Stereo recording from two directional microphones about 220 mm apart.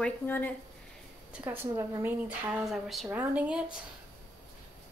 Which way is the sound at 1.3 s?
10° right (ahead or behind).